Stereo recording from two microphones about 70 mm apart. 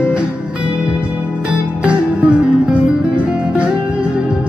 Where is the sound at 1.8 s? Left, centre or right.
Centre.